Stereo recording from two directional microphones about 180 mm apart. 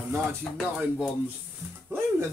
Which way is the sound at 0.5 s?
Centre (ahead or behind).